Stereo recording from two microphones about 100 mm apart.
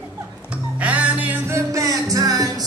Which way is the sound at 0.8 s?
15° right (ahead or behind).